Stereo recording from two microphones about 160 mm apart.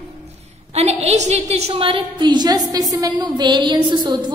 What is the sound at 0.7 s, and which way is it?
A woman's voice, 40° right (ahead or behind).